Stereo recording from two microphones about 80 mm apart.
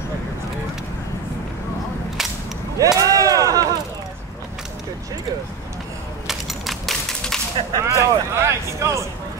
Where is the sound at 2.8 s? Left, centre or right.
Right.